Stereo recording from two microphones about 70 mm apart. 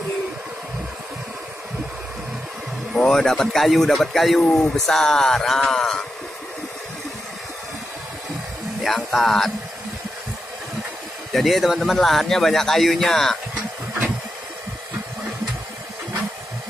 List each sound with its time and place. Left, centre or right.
2.9 s speech: centre
8.8 s speech: centre
11.3 s speech: centre
13.6 s a sound: right